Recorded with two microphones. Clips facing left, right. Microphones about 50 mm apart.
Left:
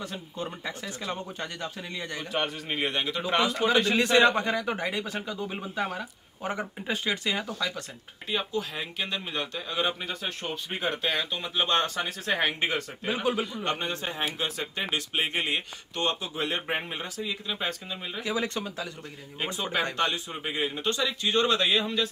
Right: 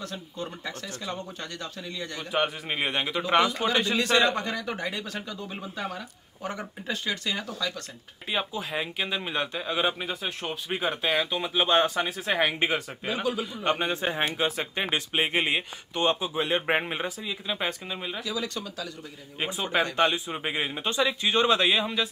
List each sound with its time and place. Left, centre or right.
0.0 s speech: centre
2.3 s speech: centre
3.9 s speech: left; by 7.8 s centre
8.3 s speech: centre
13.0 s speech: left
13.7 s a man's voice: centre
17.5 s speech: centre
18.2 s speech: left
19.6 s a man's voice: right; by 22.1 s centre